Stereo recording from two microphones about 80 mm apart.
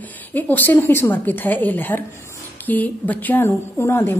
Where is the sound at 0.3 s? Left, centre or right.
Left.